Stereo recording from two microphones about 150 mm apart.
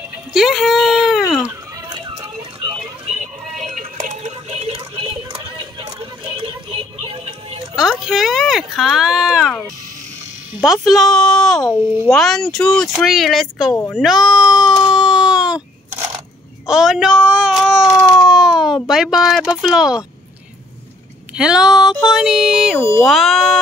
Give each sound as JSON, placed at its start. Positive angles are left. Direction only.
{"t": 0.3, "sound": "speech", "side_deg": 0}
{"t": 1.9, "sound": "a sound", "side_deg": -30}
{"t": 3.1, "sound": "a sound", "side_deg": -50}
{"t": 8.0, "sound": "speech", "side_deg": -5}
{"t": 10.5, "sound": "speech", "side_deg": -5}
{"t": 11.8, "sound": "a child's voice", "side_deg": -10}
{"t": 12.1, "sound": "speech", "side_deg": 5}
{"t": 13.9, "sound": "a sound", "side_deg": 0}
{"t": 16.6, "sound": "baby cry", "side_deg": -5}
{"t": 18.9, "sound": "speech", "side_deg": -5}
{"t": 21.4, "sound": "speech", "side_deg": -5}